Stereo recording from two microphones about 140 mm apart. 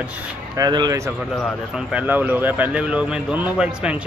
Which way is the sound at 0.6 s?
30° right (ahead or behind).